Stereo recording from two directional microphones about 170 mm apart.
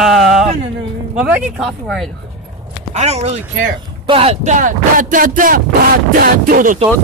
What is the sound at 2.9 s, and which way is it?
Speech, 40° right (ahead or behind).